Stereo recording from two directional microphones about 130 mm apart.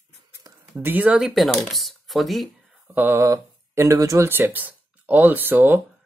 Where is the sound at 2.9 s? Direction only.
15° right (ahead or behind).